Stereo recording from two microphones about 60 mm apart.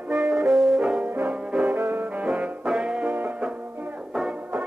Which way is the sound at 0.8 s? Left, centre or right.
Centre.